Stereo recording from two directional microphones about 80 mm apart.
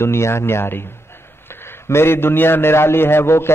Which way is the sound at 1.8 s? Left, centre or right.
Left.